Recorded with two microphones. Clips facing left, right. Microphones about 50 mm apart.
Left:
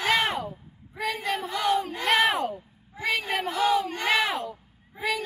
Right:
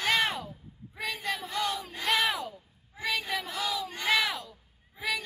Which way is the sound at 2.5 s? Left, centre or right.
Left.